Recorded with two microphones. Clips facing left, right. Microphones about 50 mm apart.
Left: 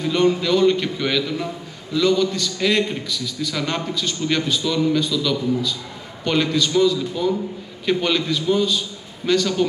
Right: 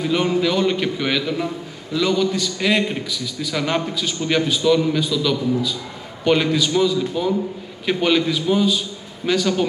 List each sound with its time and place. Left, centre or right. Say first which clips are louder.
0.0 s a man's voice: even; centre